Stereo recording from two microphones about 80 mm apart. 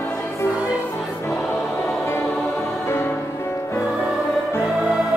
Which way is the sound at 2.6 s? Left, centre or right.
Left.